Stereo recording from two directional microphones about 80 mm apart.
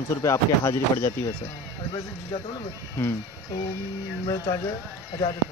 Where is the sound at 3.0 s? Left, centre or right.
Left.